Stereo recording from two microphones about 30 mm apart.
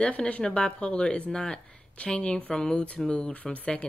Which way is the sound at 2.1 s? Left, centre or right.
Left.